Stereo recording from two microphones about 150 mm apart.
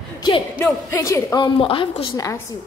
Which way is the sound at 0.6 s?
20° left (ahead or behind).